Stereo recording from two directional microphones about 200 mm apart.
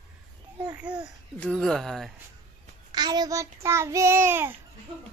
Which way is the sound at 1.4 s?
5° left (ahead or behind).